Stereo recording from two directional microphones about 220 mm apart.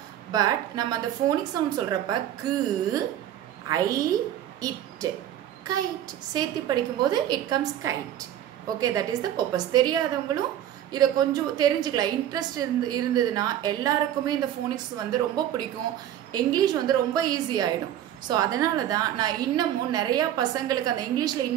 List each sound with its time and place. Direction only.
0.3 s a woman's voice: 15° right (ahead or behind)
3.6 s a woman's voice: 15° right (ahead or behind)
4.6 s a sound: 15° right (ahead or behind)
6.3 s a woman's voice: 20° right (ahead or behind)